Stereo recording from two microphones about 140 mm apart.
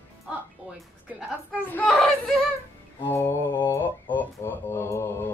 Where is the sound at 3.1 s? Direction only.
20° left (ahead or behind).